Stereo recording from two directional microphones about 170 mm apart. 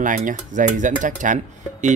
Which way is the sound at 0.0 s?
50° right (ahead or behind).